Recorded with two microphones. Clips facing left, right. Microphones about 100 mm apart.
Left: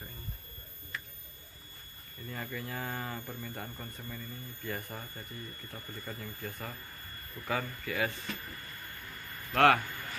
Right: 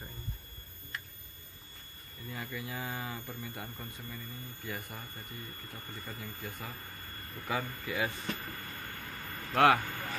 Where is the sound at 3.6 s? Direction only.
5° left (ahead or behind).